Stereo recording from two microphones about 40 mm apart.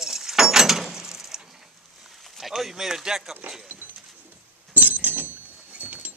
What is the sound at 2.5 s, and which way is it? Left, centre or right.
Speech, centre.